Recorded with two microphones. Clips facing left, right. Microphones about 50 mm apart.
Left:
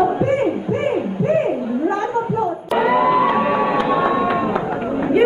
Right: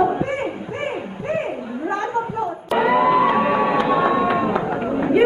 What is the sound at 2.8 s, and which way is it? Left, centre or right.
Crowd, centre.